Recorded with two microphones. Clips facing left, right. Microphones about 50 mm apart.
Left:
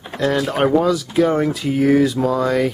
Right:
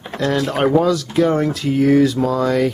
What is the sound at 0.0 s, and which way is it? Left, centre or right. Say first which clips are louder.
Speech: even; centre.